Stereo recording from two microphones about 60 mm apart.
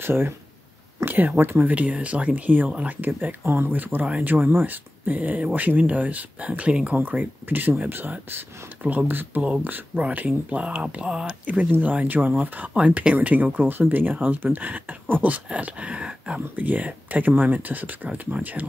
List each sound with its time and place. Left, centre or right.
0.0 s speech: right
3.1 s speech: right; by 7.0 s centre
7.0 s speech: right; by 11.3 s centre
11.7 s speech: right